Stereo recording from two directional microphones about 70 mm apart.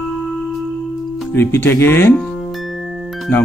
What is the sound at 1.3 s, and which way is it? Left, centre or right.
Speech, left.